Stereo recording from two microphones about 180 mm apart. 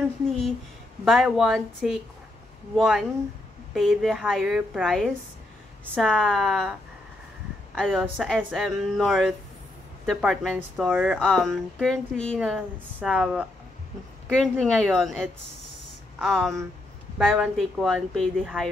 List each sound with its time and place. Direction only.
1.0 s a woman's voice: centre (ahead or behind)
7.7 s a woman's voice: 5° left (ahead or behind)